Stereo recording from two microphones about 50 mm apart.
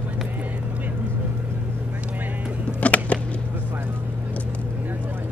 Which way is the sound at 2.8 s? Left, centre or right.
Left.